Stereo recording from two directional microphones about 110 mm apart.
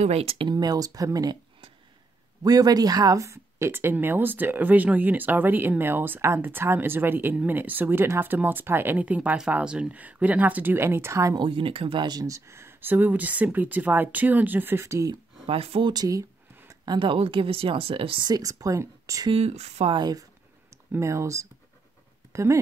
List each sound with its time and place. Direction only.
0.0 s speech: 65° right (ahead or behind)
0.5 s speech: 40° right (ahead or behind)
2.4 s speech: 35° right (ahead or behind)
11.3 s speech: 50° right (ahead or behind); by 15.1 s 25° right (ahead or behind)
15.4 s speech: 60° right (ahead or behind)
15.9 s speech: 35° right (ahead or behind)
16.8 s speech: 45° right (ahead or behind)
18.3 s speech: 30° right (ahead or behind)
19.2 s speech: 65° right (ahead or behind)
19.9 s speech: 40° right (ahead or behind)
20.7 s speech: 25° right (ahead or behind)